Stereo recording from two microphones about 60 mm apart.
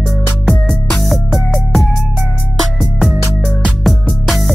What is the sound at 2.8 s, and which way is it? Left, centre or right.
Music, centre.